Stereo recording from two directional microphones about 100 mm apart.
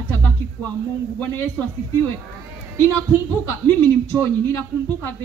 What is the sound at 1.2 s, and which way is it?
Speech, 20° left (ahead or behind).